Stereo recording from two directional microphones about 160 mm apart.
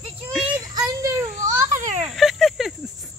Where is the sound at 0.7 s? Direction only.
20° right (ahead or behind).